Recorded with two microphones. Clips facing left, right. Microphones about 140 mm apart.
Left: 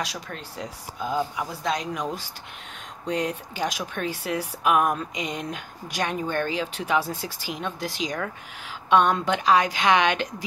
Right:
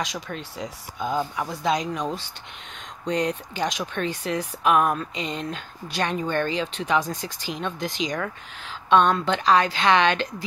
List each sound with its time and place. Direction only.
0.0 s speech: centre (ahead or behind)
3.1 s speech: 5° left (ahead or behind)